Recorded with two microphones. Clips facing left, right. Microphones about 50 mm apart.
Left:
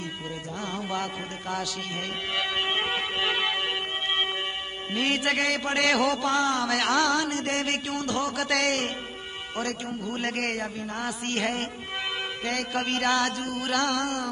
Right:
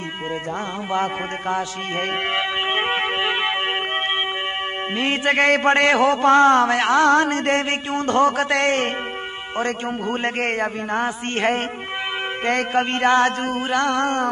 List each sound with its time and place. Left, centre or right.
0.9 s music: right
4.9 s music: right